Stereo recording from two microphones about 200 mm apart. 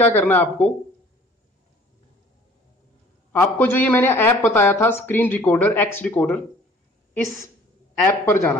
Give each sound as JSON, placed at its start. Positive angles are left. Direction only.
{"t": 0.0, "sound": "speech", "side_deg": 10}
{"t": 3.3, "sound": "speech", "side_deg": 10}
{"t": 8.1, "sound": "speech", "side_deg": 15}